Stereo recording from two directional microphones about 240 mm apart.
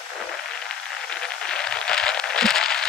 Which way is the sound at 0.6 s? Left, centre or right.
Centre.